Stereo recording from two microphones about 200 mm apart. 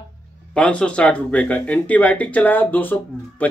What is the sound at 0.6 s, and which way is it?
Speech, 5° left (ahead or behind).